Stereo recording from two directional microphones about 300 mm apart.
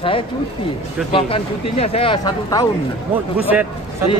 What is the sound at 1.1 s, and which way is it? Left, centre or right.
Speech, centre.